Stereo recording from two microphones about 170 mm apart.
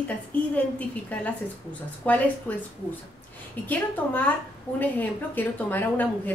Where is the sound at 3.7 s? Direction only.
10° left (ahead or behind).